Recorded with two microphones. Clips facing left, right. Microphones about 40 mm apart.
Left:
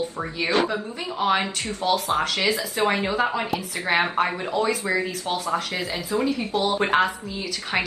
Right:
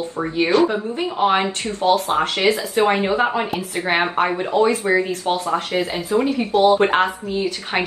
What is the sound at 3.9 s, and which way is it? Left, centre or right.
Speech, centre.